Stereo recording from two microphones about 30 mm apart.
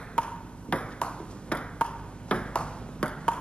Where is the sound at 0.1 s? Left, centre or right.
Left.